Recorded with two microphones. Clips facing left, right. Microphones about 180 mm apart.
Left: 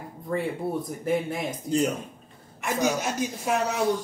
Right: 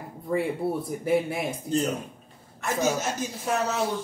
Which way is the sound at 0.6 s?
5° right (ahead or behind).